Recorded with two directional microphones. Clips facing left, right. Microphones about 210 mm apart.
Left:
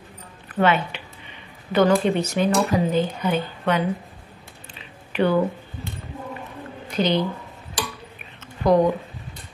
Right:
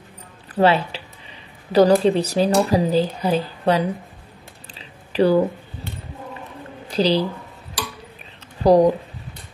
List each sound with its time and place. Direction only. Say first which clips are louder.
0.6 s speech: right 3 dB; 35° right (ahead or behind)
4.7 s a sound: right 4 dB; 35° right (ahead or behind)
6.9 s speech: right 3 dB; 35° right (ahead or behind)
8.6 s speech: right 4 dB; 35° right (ahead or behind)